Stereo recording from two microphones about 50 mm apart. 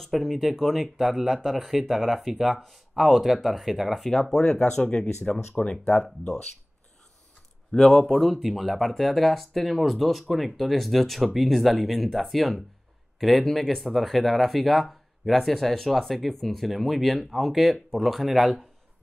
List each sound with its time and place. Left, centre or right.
0.0 s speech: centre
5.5 s speech: left
7.7 s speech: centre